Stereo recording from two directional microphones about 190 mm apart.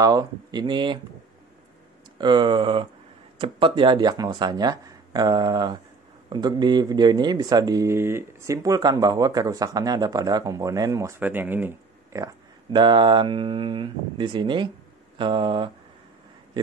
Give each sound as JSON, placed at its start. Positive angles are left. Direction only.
{"t": 0.0, "sound": "speech", "side_deg": -20}
{"t": 2.1, "sound": "speech", "side_deg": -25}
{"t": 12.7, "sound": "speech", "side_deg": -25}